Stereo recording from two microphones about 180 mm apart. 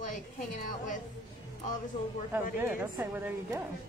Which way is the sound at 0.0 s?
45° left (ahead or behind).